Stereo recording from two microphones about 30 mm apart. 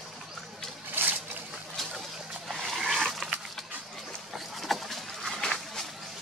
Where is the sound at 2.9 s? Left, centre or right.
Centre.